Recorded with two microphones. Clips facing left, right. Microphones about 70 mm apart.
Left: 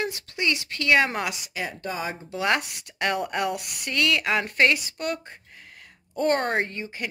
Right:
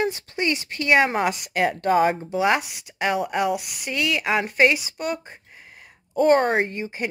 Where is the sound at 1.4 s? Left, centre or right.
Right.